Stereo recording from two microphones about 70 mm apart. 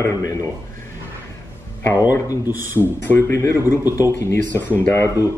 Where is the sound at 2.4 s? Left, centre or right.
Right.